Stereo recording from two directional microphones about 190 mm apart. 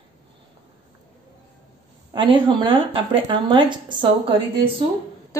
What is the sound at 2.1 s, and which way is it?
Speech, 25° right (ahead or behind).